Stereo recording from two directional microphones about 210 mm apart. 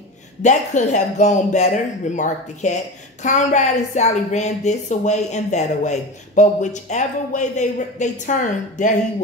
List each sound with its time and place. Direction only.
0.4 s speech: 35° left (ahead or behind)